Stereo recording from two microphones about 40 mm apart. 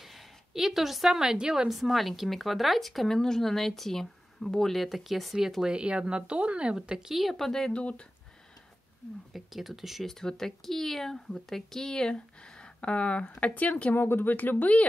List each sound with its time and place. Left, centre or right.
0.0 s a woman's voice: centre
1.7 s speech: centre
3.1 s speech: centre
4.7 s speech: centre
5.6 s speech: right
7.3 s speech: centre
9.3 s speech: centre
10.0 s speech: centre; by 13.9 s left
13.9 s speech: left